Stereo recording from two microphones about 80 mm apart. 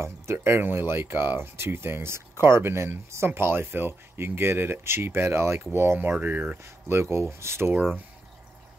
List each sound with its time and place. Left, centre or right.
0.0 s speech: right
6.9 s speech: right